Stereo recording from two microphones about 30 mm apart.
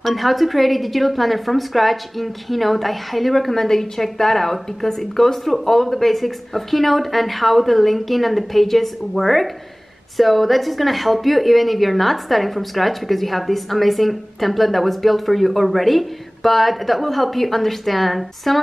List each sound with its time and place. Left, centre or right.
0.0 s a woman's voice: centre